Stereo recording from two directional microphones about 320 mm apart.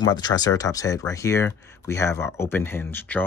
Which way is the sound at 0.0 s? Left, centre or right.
Centre.